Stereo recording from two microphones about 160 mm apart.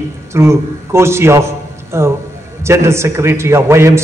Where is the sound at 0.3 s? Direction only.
15° right (ahead or behind).